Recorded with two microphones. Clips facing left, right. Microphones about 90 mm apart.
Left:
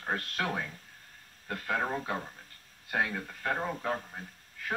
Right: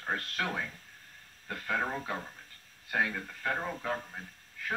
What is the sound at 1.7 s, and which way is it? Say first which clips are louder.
A man's voice: left 1 dB; 10° left (ahead or behind).